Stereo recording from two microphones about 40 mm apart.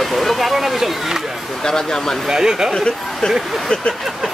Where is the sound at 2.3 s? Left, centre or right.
Centre.